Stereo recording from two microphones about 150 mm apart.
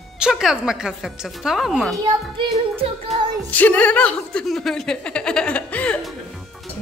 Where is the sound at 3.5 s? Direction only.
10° left (ahead or behind).